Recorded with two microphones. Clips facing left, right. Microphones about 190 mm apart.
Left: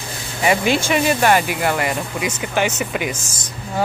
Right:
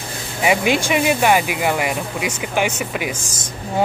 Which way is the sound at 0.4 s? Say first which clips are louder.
Even; 10° right (ahead or behind).